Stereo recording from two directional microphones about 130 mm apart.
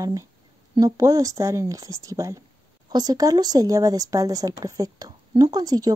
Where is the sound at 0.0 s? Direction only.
25° right (ahead or behind).